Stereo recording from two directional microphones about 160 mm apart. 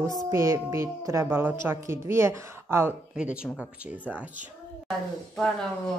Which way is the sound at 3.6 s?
10° left (ahead or behind).